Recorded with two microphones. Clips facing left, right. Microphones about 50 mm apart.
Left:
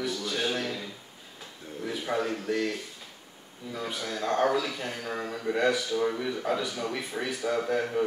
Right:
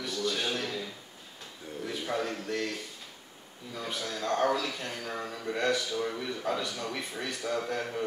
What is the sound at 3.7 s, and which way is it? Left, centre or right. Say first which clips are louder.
A man's voice: left 2 dB; centre.